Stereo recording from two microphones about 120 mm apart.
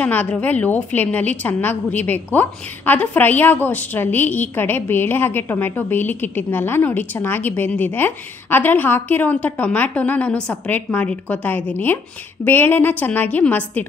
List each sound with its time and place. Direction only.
0.0 s a woman's voice: 15° left (ahead or behind)